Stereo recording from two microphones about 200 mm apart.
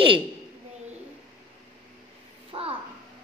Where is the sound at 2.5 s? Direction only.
30° right (ahead or behind).